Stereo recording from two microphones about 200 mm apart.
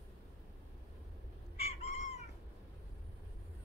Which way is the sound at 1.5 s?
30° left (ahead or behind).